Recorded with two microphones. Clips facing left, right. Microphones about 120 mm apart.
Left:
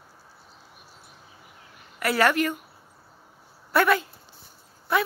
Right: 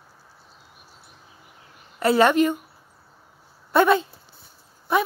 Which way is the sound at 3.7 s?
20° right (ahead or behind).